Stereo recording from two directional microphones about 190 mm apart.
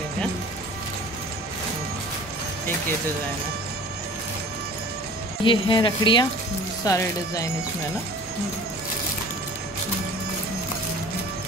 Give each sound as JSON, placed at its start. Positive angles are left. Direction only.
{"t": 5.4, "sound": "speech", "side_deg": 25}